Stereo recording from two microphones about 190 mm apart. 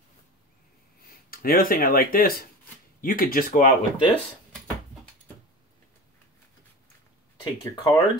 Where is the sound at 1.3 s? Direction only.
50° left (ahead or behind).